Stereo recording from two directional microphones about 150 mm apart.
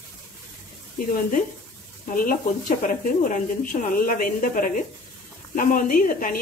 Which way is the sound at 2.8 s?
65° left (ahead or behind).